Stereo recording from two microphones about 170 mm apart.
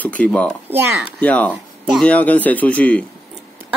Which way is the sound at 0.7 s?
15° right (ahead or behind).